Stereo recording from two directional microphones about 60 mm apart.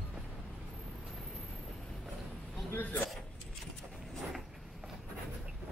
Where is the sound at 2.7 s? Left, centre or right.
Left.